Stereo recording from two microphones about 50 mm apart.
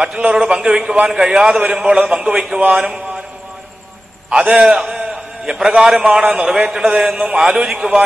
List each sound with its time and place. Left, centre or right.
0.0 s a man's voice: centre
4.3 s a man's voice: centre